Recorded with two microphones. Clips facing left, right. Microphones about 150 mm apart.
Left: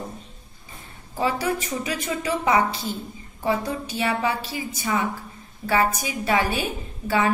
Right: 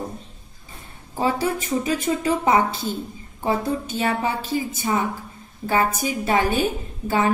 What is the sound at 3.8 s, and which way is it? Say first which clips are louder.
A woman's voice: right 1 dB; 45° right (ahead or behind).